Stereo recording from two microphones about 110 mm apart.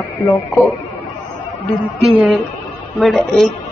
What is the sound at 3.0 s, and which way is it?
Speech, centre (ahead or behind).